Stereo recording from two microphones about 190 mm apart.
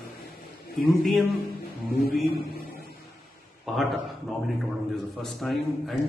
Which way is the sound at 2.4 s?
55° left (ahead or behind).